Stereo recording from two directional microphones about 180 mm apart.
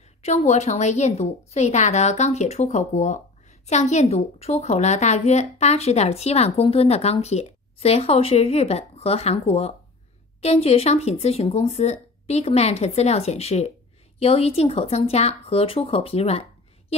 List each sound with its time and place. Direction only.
0.2 s a woman's voice: 35° left (ahead or behind)